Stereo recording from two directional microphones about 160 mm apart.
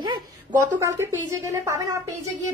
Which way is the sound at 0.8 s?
20° right (ahead or behind).